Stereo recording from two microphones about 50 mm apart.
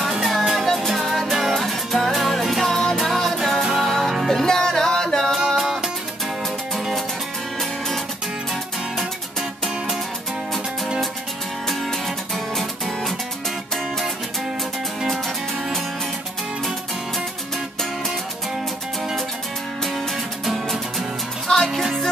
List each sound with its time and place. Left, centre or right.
0.2 s music: centre
5.6 s music: centre
12.5 s music: centre
20.4 s music: centre
21.5 s music: centre